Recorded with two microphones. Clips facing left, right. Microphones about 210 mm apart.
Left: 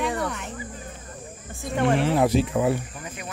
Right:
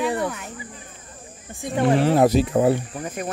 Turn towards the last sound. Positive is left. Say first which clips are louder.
# right 7 dB
turn(degrees=-40)  # may be behind; listen again after turning